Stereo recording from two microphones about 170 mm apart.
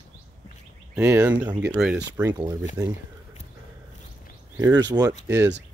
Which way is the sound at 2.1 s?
20° right (ahead or behind).